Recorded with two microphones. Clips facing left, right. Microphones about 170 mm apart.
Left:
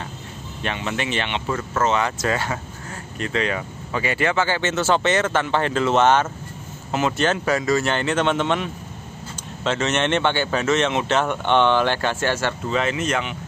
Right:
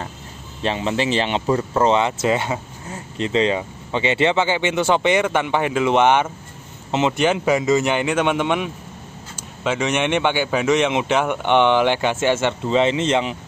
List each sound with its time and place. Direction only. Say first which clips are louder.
0.6 s speech: right 5 dB; 30° right (ahead or behind)
1.5 s speech: right 4 dB; 20° right (ahead or behind)